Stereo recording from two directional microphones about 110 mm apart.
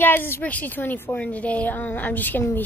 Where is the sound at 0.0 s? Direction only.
20° left (ahead or behind).